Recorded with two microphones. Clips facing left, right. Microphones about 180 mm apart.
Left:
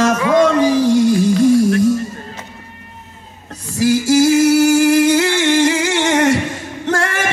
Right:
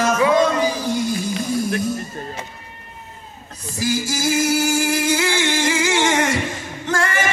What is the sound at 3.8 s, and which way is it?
Singing, 70° left (ahead or behind).